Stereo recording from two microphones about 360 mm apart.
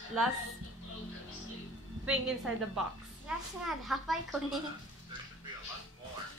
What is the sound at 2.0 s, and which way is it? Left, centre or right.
A woman's voice, centre.